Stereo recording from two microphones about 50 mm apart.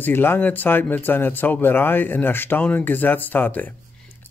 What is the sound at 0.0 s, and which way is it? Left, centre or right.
Speech, left.